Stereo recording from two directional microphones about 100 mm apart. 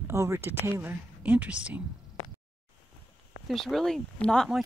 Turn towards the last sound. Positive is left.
turn(degrees=10)  # may be behind; listen again after turning